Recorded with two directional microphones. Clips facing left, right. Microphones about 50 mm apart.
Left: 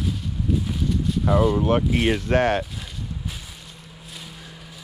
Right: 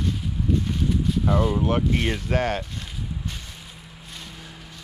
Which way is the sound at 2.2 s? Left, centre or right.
Left.